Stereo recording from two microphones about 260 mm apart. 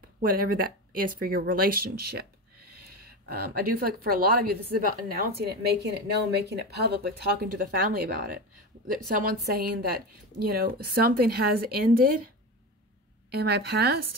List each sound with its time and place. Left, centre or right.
0.2 s a woman's voice: right
3.3 s a woman's voice: right
13.3 s a woman's voice: right